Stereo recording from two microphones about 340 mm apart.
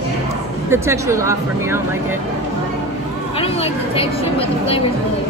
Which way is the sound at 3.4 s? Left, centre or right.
Centre.